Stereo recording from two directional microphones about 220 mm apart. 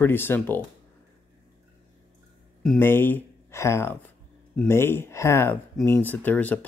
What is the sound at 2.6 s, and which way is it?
Speech, 5° left (ahead or behind).